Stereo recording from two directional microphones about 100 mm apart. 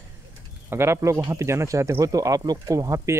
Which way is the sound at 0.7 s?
25° right (ahead or behind).